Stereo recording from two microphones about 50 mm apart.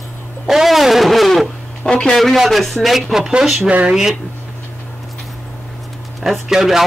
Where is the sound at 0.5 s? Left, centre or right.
Centre.